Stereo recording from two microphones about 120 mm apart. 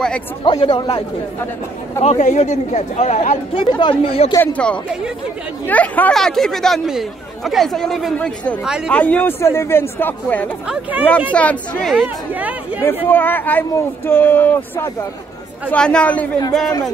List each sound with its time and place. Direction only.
0.5 s speech: 45° left (ahead or behind)
2.0 s speech: 70° left (ahead or behind)
3.5 s speech: 40° left (ahead or behind)
4.0 s speech: 55° left (ahead or behind)
4.4 s speech: 10° left (ahead or behind)
8.9 s speech: 15° left (ahead or behind)
10.7 s speech: 10° right (ahead or behind)
11.3 s speech: 10° left (ahead or behind)
12.4 s speech: 15° right (ahead or behind)
12.8 s speech: 15° left (ahead or behind)